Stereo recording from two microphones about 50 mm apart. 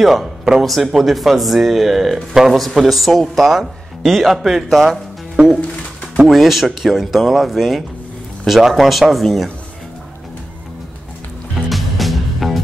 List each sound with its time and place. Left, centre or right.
0.0 s speech: centre
5.3 s music: centre
6.2 s speech: centre
11.7 s music: centre